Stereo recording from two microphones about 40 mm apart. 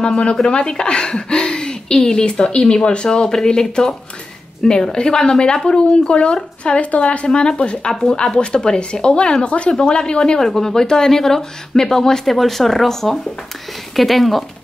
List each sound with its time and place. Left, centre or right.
0.0 s speech: left
7.9 s speech: centre
10.4 s speech: centre